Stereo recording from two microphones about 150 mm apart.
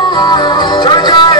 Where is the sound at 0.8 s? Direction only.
30° left (ahead or behind).